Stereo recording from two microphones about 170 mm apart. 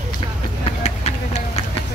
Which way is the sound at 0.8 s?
40° left (ahead or behind).